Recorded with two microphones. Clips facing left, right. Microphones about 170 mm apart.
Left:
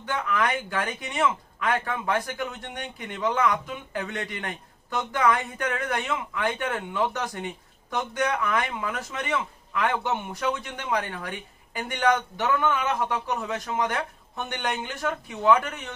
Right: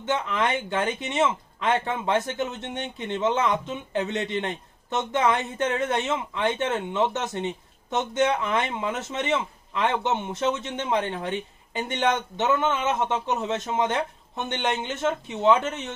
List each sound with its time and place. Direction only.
0.0 s speech: 25° right (ahead or behind)